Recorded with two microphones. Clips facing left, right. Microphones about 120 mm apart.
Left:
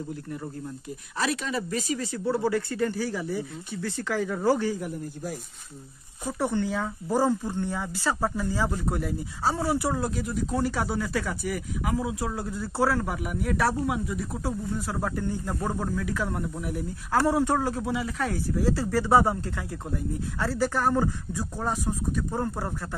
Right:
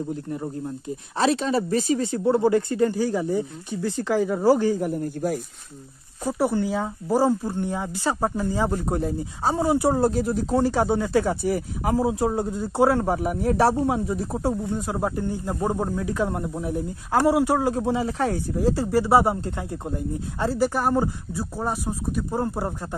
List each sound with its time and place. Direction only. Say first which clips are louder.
0.1 s speech: right 6 dB; 25° right (ahead or behind)
4.6 s speech: right 6 dB; 40° right (ahead or behind); by 5.4 s 60° right (ahead or behind)
6.2 s speech: right 4 dB; 10° right (ahead or behind)
9.9 s speech: right 7 dB; 35° right (ahead or behind); by 13.0 s 20° right (ahead or behind)
13.0 s speech: right 7 dB; 35° right (ahead or behind)
14.7 s speech: right 4 dB; 20° right (ahead or behind)
17.7 s speech: right 5 dB; 30° right (ahead or behind)